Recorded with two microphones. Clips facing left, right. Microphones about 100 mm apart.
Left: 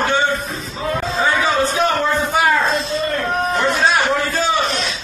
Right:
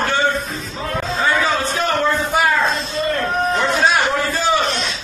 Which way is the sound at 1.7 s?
Centre (ahead or behind).